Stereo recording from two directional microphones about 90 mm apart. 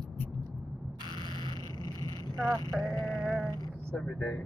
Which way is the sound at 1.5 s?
40° left (ahead or behind).